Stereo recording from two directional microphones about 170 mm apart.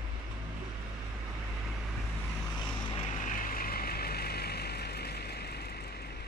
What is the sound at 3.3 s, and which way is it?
Vehicle, 55° left (ahead or behind).